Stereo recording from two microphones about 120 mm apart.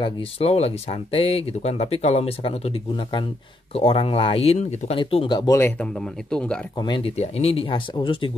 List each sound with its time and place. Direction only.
0.0 s speech: 55° left (ahead or behind)
4.9 s speech: 45° left (ahead or behind)
5.8 s speech: 10° left (ahead or behind)
6.8 s speech: 40° left (ahead or behind)
7.2 s speech: 60° left (ahead or behind); by 8.3 s 45° left (ahead or behind)